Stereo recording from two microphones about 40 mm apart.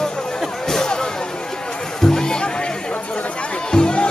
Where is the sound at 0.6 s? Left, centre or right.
Centre.